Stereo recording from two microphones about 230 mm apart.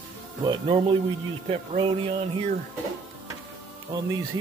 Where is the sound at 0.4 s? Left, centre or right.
Right.